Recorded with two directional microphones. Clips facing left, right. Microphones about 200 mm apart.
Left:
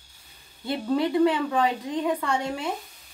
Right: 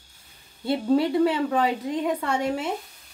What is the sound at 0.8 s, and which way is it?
A woman's voice, 5° right (ahead or behind).